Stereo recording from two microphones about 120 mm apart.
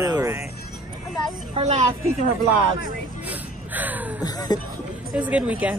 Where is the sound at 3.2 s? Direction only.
15° right (ahead or behind).